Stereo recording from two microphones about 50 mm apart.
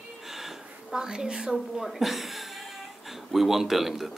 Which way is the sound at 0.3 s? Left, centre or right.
Centre.